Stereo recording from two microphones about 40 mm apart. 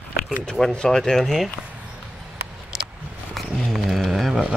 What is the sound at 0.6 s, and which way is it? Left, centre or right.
Speech, centre.